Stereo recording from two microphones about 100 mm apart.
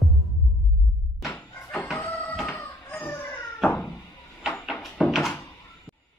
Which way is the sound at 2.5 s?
20° left (ahead or behind).